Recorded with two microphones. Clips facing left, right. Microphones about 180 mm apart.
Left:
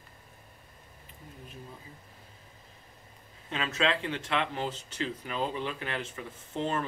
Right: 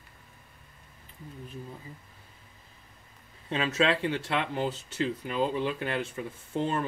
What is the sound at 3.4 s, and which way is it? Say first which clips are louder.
Speech: right 4 dB; 40° right (ahead or behind).